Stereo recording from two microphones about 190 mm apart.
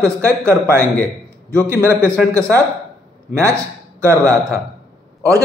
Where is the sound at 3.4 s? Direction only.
15° right (ahead or behind).